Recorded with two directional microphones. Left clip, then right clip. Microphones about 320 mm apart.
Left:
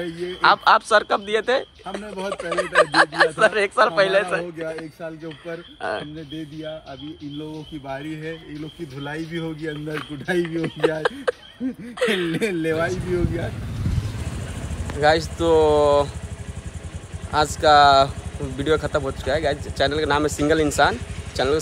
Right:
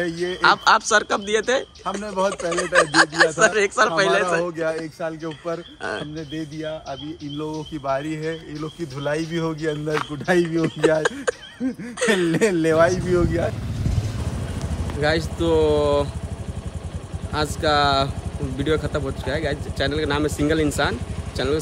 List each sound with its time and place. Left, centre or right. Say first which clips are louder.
0.0 s speech: right 1 dB; centre
9.0 s speech: right 6 dB; centre
12.1 s speech: right 7 dB; centre
15.0 s speech: left 4 dB; centre
17.3 s speech: left 5 dB; centre